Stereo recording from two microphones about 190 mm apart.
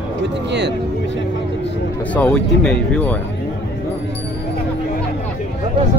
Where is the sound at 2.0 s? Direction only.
5° left (ahead or behind).